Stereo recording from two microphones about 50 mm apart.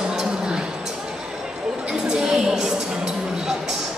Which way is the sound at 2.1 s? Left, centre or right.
Centre.